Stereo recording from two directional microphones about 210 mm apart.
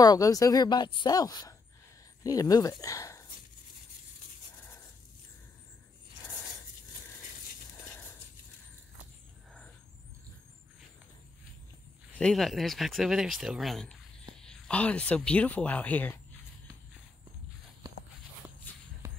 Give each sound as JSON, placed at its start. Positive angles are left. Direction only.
{"t": 0.0, "sound": "speech", "side_deg": 15}
{"t": 12.1, "sound": "speech", "side_deg": 5}